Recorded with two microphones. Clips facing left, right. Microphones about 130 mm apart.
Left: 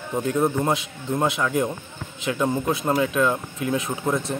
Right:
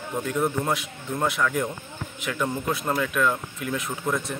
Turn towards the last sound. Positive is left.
turn(degrees=25)  # may be behind; listen again after turning